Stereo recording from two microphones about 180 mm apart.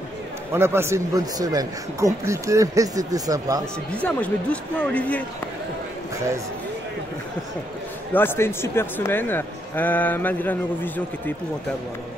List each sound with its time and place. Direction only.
0.5 s speech: 15° right (ahead or behind)
3.9 s speech: 5° left (ahead or behind)
6.1 s speech: 15° right (ahead or behind)
8.1 s speech: 10° left (ahead or behind)